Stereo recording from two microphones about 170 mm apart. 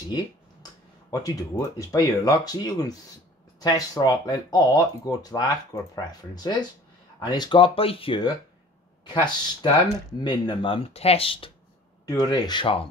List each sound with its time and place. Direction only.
1.1 s speech: 20° left (ahead or behind)
12.1 s speech: 20° left (ahead or behind)